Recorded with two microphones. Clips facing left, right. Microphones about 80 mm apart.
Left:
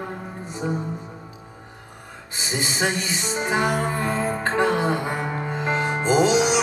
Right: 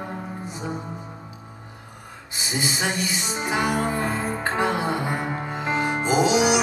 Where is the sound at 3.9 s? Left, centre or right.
Centre.